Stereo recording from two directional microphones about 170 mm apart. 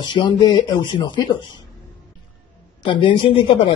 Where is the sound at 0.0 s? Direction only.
25° left (ahead or behind).